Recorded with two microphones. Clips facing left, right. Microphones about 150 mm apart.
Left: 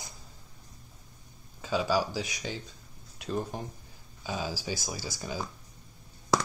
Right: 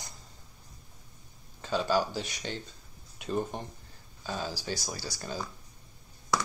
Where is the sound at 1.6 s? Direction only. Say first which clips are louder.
Even; 10° left (ahead or behind).